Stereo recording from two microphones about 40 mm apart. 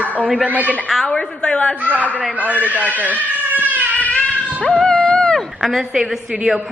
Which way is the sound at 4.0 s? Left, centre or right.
Left.